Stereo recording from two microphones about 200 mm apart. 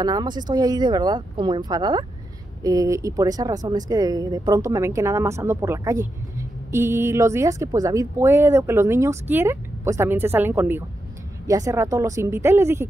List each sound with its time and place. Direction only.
0.0 s speech: 20° right (ahead or behind)